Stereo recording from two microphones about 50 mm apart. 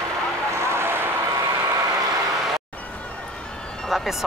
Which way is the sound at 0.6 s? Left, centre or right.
Right.